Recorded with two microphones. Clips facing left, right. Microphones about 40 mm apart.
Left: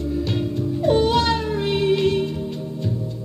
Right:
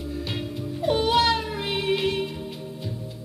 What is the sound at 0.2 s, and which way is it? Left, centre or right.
Music, centre.